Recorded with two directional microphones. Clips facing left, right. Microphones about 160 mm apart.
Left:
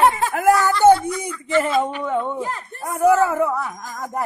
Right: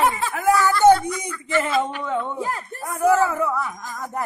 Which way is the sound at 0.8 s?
10° left (ahead or behind).